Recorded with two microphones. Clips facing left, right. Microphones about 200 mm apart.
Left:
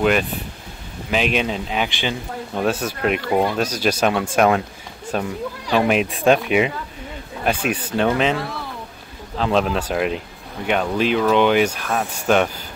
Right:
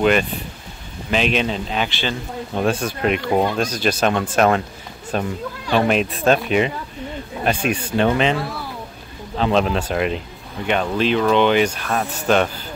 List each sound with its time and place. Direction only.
0.0 s speech: centre (ahead or behind)
7.8 s speech: 5° right (ahead or behind)